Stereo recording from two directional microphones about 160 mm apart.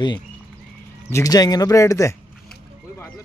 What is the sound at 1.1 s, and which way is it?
Speech, 25° left (ahead or behind).